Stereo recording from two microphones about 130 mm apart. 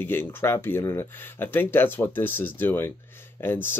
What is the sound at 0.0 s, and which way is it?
Speech, 15° left (ahead or behind).